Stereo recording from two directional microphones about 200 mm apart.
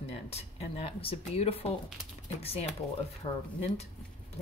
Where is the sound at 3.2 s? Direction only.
25° left (ahead or behind).